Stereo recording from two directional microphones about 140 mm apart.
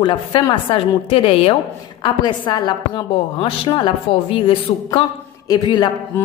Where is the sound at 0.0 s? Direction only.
35° left (ahead or behind).